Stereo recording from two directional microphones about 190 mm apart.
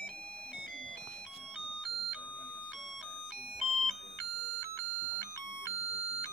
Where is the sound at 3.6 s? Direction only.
Centre (ahead or behind).